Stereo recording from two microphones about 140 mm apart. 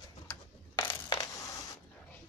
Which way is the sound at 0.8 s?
30° left (ahead or behind).